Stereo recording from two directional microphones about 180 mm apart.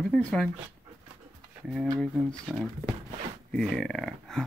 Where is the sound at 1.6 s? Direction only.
5° left (ahead or behind).